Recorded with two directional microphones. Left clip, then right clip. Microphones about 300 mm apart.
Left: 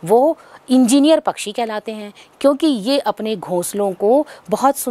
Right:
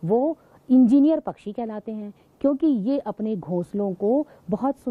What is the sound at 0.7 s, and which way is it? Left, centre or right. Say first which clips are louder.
A woman's voice: left 5 dB; centre.